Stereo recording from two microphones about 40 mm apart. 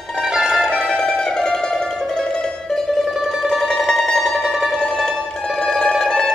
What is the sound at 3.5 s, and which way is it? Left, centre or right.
Mandolin, centre.